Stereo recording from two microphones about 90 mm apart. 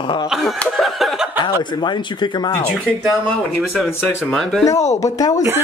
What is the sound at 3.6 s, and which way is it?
Speech, 5° right (ahead or behind).